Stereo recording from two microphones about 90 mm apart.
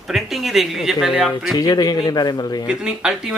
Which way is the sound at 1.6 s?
45° left (ahead or behind).